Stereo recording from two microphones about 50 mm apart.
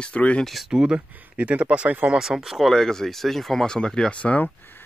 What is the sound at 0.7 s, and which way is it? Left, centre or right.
Speech, centre.